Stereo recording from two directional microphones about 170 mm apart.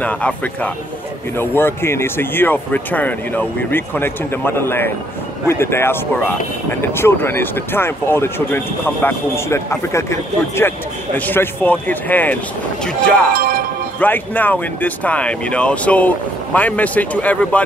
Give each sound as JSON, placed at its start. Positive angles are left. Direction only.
{"t": 0.0, "sound": "speech", "side_deg": 10}
{"t": 13.3, "sound": "train", "side_deg": -55}
{"t": 13.9, "sound": "speech", "side_deg": 10}